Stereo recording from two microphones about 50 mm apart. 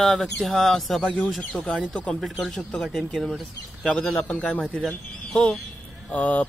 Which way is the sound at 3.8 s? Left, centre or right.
Left.